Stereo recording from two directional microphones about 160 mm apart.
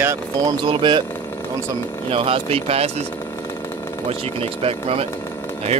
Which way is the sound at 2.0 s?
35° right (ahead or behind).